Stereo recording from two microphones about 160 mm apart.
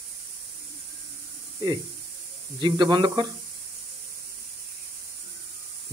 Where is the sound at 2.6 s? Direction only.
30° right (ahead or behind).